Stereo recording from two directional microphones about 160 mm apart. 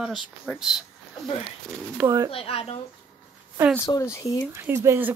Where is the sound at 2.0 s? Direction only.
15° right (ahead or behind).